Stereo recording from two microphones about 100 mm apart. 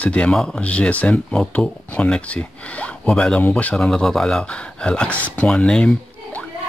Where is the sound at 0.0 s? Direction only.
10° left (ahead or behind).